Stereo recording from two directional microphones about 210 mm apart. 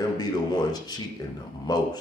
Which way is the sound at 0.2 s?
20° left (ahead or behind).